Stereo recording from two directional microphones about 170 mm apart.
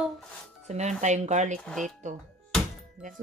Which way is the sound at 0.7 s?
40° right (ahead or behind).